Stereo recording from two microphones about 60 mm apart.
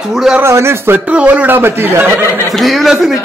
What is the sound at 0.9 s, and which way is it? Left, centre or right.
Speech, right.